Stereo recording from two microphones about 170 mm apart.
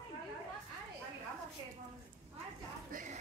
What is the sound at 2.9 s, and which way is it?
Music, 50° right (ahead or behind).